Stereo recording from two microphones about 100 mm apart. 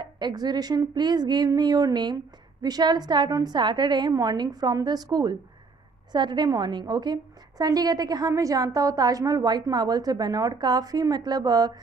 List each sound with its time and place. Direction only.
0.0 s a woman's voice: 45° right (ahead or behind)